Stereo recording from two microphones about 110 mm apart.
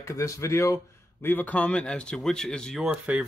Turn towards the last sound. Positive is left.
turn(degrees=-10)  # may be behind; listen again after turning